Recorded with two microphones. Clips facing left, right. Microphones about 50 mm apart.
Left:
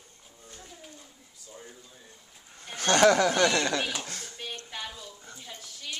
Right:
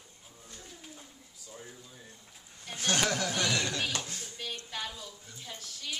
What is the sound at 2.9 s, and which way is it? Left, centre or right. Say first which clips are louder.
Speech: left 10 dB; left.